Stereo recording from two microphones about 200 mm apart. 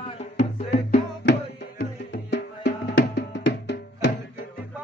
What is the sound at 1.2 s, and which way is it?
Music, 60° left (ahead or behind).